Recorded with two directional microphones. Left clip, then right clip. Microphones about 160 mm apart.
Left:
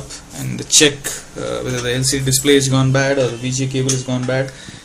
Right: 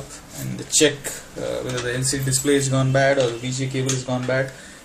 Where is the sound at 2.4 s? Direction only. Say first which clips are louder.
Left 6 dB; 35° left (ahead or behind).